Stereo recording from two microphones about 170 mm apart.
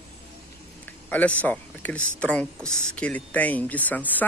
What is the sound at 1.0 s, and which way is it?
A man's voice, 10° left (ahead or behind).